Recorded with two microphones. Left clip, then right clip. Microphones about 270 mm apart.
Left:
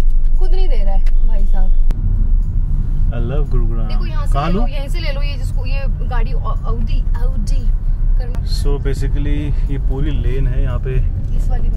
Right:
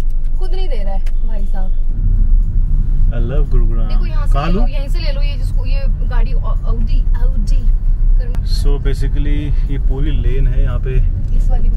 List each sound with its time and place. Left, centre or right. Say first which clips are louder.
0.4 s a sound: even; centre
3.1 s speech: even; centre
8.3 s speech: left 1 dB; centre